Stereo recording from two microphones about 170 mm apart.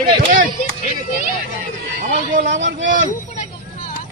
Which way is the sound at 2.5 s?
90° right.